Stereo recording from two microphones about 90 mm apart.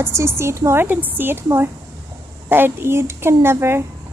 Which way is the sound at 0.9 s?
20° right (ahead or behind).